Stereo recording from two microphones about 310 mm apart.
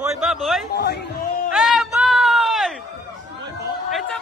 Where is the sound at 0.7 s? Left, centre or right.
Left.